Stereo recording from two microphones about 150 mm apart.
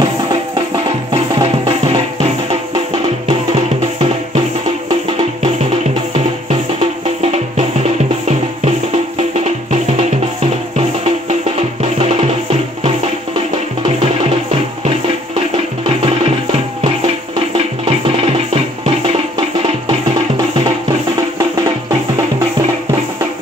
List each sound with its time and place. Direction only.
1.1 s music: 40° right (ahead or behind)
3.3 s music: 40° right (ahead or behind)
6.8 s music: 45° right (ahead or behind)
17.8 s music: 40° right (ahead or behind)